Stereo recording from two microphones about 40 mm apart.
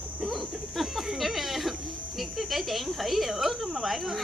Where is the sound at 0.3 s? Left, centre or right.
Centre.